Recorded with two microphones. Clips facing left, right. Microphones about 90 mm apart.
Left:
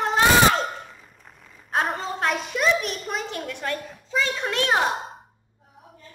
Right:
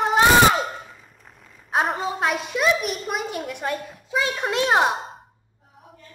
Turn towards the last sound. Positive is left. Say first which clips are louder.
# right 3 dB
turn(degrees=-20)  # may be behind; listen again after turning